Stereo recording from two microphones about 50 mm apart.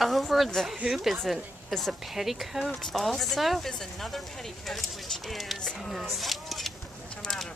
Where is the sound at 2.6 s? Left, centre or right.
Centre.